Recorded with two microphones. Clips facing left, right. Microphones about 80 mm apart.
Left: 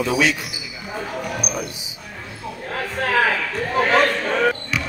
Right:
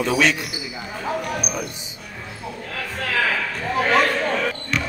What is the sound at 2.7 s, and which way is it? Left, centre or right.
Speech, left.